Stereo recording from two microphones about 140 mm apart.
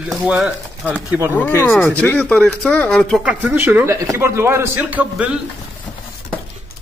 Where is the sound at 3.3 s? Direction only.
10° right (ahead or behind).